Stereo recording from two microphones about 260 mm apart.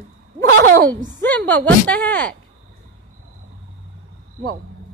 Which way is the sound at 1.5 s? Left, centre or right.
Centre.